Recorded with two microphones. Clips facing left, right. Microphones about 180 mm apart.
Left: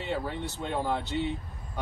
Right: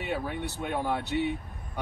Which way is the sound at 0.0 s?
10° right (ahead or behind).